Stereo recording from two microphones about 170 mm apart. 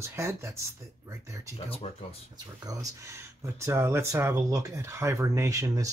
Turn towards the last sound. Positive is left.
turn(degrees=-20)  # may be behind; listen again after turning